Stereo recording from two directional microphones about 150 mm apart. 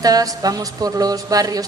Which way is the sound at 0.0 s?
25° right (ahead or behind).